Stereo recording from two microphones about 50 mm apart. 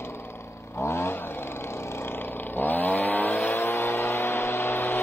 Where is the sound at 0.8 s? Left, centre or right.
Left.